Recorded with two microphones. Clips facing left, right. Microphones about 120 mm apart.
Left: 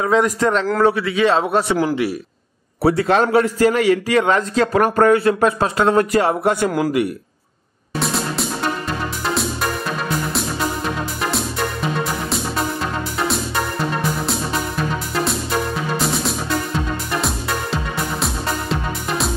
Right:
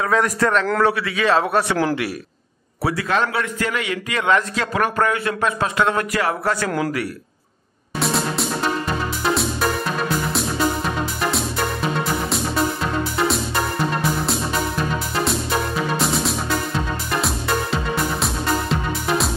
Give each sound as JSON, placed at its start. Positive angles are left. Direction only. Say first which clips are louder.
{"t": 0.0, "sound": "speech", "louder": "left 3 dB", "side_deg": 25}
{"t": 2.8, "sound": "a man's voice", "louder": "left 6 dB", "side_deg": 30}
{"t": 8.0, "sound": "music", "louder": "right 1 dB", "side_deg": 0}
{"t": 11.2, "sound": "music", "louder": "even", "side_deg": 0}
{"t": 16.0, "sound": "music", "louder": "even", "side_deg": 0}
{"t": 18.2, "sound": "music", "louder": "right 1 dB", "side_deg": 0}